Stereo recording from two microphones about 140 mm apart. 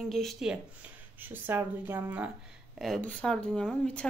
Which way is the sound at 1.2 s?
15° right (ahead or behind).